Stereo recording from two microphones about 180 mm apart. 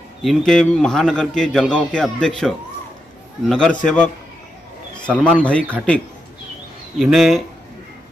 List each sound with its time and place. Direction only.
0.2 s a man's voice: centre (ahead or behind)
5.2 s a man's voice: 5° left (ahead or behind)
7.0 s a man's voice: centre (ahead or behind)